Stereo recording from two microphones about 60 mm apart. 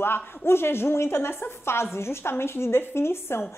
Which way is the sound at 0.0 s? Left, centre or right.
Left.